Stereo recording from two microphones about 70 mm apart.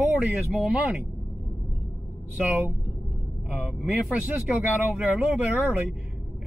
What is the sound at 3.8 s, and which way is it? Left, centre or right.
Speech, right.